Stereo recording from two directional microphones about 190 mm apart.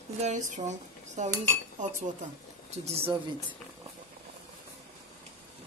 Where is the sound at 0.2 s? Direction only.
40° right (ahead or behind).